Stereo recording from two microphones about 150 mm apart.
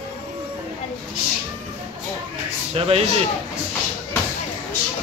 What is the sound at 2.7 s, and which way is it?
Speech, 40° right (ahead or behind).